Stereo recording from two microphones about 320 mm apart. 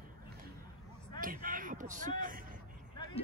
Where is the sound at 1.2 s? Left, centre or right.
Right.